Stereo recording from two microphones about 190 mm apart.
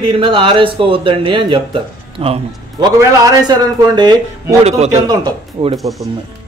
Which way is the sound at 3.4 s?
20° right (ahead or behind).